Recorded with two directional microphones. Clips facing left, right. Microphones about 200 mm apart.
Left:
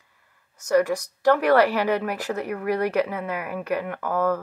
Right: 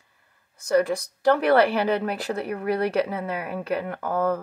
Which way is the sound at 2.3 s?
30° right (ahead or behind).